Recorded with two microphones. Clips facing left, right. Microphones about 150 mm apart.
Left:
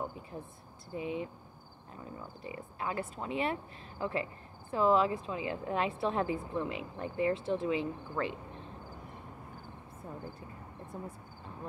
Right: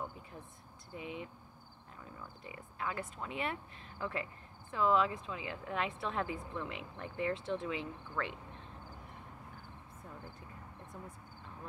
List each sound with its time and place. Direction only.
0.9 s speech: 30° left (ahead or behind)
7.3 s speech: 5° left (ahead or behind)
7.6 s speech: 35° left (ahead or behind)
10.9 s speech: 35° left (ahead or behind)